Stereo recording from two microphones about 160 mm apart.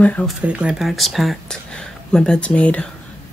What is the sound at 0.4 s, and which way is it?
Speech, 5° right (ahead or behind).